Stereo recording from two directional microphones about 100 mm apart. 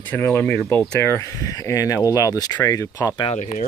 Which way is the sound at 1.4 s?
35° left (ahead or behind).